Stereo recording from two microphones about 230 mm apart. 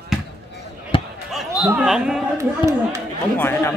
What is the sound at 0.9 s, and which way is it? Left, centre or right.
Basketball bounce, left.